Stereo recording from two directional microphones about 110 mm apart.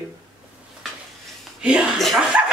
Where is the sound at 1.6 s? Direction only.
10° right (ahead or behind).